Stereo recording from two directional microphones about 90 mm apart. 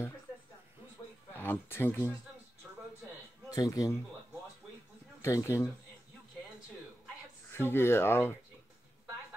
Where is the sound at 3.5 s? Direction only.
40° left (ahead or behind).